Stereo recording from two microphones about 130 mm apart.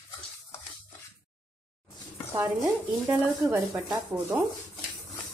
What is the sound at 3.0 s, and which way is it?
Speech, 20° right (ahead or behind).